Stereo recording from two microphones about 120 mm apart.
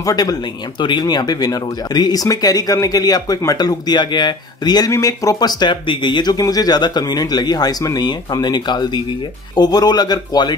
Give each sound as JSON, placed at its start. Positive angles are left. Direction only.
{"t": 0.0, "sound": "speech", "side_deg": 30}